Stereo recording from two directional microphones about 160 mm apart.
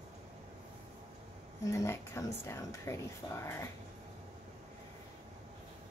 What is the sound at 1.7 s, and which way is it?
Speech, 15° left (ahead or behind).